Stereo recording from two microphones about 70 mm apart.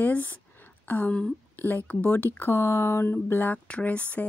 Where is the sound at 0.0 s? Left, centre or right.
Left.